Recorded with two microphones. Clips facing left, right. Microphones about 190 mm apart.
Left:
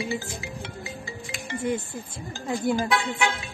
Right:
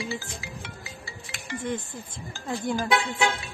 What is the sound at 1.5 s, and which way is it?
Speech, 10° left (ahead or behind).